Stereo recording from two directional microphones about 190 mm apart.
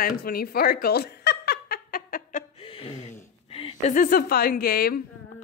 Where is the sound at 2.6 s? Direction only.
30° left (ahead or behind).